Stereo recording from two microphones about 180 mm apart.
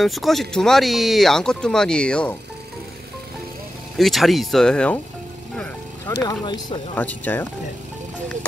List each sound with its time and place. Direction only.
0.0 s speech: centre (ahead or behind)
4.0 s speech: centre (ahead or behind)
6.2 s speech: 20° left (ahead or behind)
7.0 s speech: 10° left (ahead or behind)